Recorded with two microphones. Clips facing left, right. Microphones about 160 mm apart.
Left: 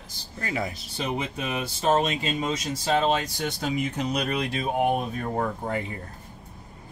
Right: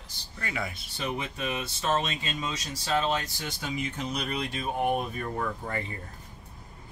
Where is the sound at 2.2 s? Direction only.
65° left (ahead or behind).